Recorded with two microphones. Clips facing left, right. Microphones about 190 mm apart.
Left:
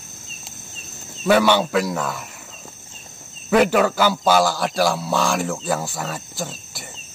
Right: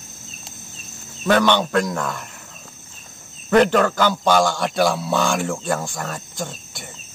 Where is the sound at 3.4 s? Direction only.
5° left (ahead or behind).